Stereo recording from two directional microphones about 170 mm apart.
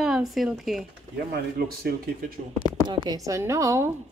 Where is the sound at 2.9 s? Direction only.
20° right (ahead or behind).